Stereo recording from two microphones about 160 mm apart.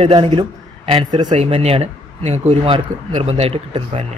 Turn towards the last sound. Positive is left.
turn(degrees=-35)  # may be behind; listen again after turning